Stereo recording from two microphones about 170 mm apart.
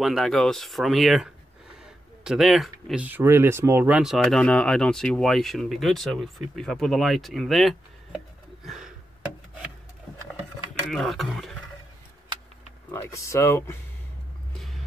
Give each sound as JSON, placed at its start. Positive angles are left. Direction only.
{"t": 0.0, "sound": "speech", "side_deg": 0}
{"t": 8.6, "sound": "a sound", "side_deg": -5}
{"t": 10.7, "sound": "speech", "side_deg": 0}
{"t": 12.9, "sound": "speech", "side_deg": 15}